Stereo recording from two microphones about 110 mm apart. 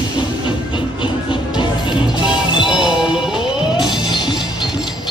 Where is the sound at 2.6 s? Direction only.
5° right (ahead or behind).